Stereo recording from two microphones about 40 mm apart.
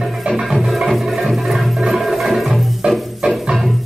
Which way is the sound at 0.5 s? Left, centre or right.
Centre.